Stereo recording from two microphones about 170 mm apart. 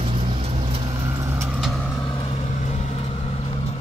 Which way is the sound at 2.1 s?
30° left (ahead or behind).